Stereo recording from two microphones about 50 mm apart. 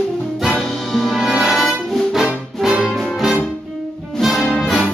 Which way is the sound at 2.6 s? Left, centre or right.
Centre.